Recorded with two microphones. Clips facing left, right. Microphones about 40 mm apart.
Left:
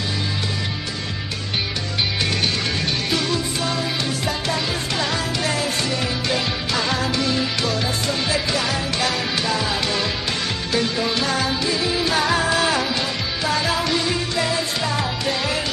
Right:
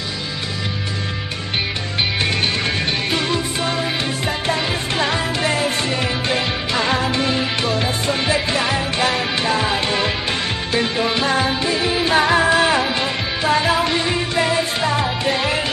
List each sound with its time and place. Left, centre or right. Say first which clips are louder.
3.1 s music: right 2 dB; right